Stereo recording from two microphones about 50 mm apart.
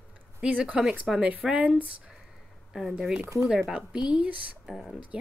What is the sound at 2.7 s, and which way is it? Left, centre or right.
Speech, centre.